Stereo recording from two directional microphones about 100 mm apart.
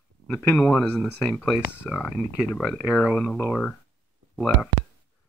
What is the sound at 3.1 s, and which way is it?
Speech, 5° left (ahead or behind).